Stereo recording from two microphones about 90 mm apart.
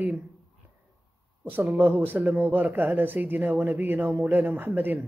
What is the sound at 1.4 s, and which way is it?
Speech, 20° right (ahead or behind).